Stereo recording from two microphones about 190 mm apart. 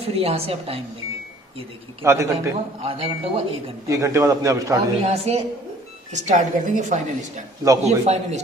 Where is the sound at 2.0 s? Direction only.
15° right (ahead or behind).